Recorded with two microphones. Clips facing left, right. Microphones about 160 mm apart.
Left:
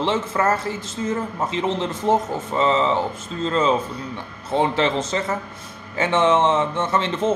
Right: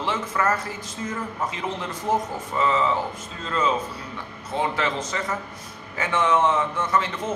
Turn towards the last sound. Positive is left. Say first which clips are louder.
# left 4 dB
turn(degrees=25)  # may be behind; listen again after turning